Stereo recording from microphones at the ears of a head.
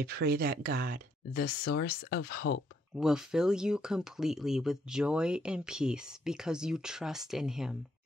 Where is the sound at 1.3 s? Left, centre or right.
Left.